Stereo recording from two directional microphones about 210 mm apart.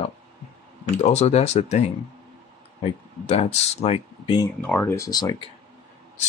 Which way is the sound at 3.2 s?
30° left (ahead or behind).